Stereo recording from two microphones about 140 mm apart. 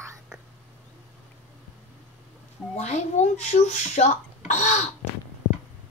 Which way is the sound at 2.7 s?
55° left (ahead or behind).